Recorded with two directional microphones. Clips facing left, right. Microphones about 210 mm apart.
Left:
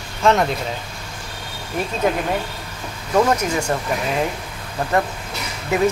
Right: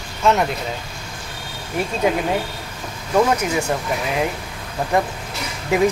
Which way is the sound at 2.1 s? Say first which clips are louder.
Right 1 dB; 10° right (ahead or behind).